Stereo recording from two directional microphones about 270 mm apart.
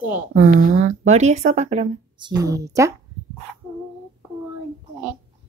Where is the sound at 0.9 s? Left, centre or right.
Right.